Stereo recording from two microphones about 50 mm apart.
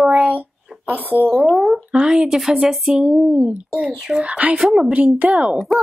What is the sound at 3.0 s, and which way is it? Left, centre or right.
Female singing, right.